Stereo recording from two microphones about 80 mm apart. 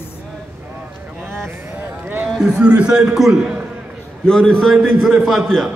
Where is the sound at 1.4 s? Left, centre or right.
Right.